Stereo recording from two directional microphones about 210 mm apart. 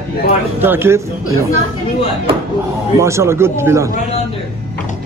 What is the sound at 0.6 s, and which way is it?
Speech, 10° right (ahead or behind).